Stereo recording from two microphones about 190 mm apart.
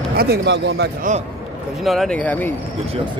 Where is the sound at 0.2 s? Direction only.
60° right (ahead or behind).